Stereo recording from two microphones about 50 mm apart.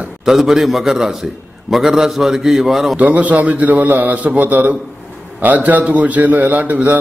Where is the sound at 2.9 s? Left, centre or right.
Right.